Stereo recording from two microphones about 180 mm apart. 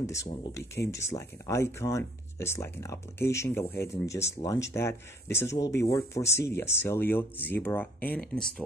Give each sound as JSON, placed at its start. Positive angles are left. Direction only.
{"t": 0.0, "sound": "speech", "side_deg": 15}